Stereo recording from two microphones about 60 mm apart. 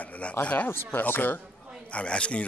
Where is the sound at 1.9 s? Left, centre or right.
Centre.